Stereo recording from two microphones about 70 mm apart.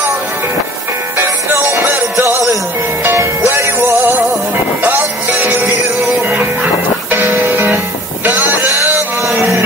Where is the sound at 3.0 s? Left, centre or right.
Right.